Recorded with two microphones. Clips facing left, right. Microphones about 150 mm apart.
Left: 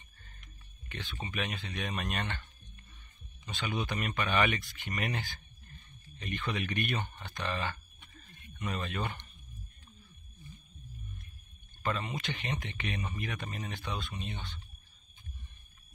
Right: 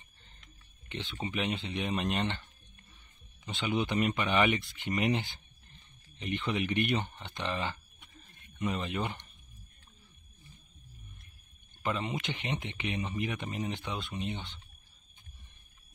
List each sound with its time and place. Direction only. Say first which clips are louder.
0.8 s speech: right 4 dB; 25° right (ahead or behind)
3.4 s speech: right 4 dB; 20° right (ahead or behind)
7.2 s a sound: right 1 dB; 20° right (ahead or behind)
11.8 s speech: right 2 dB; 15° right (ahead or behind)